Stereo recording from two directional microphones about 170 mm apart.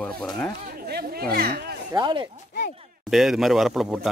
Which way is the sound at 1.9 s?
25° right (ahead or behind).